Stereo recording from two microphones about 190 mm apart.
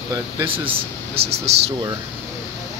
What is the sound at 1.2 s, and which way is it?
Speech, 30° right (ahead or behind).